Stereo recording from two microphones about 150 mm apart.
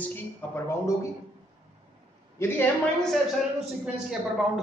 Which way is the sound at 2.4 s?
15° left (ahead or behind).